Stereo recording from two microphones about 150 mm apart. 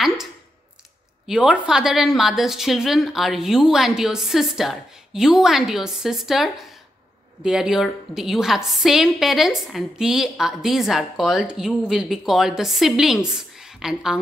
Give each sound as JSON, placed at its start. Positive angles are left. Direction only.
{"t": 1.2, "sound": "a woman's voice", "side_deg": -5}